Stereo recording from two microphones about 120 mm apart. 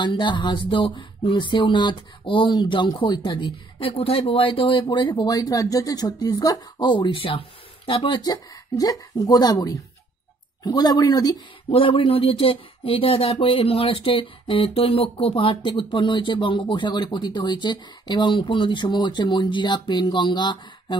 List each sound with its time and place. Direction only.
0.0 s speech: 40° left (ahead or behind)
3.9 s speech: 55° left (ahead or behind); by 11.3 s 30° left (ahead or behind)
11.7 s speech: 50° left (ahead or behind)